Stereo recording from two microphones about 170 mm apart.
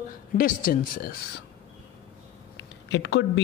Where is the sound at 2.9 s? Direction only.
90° left.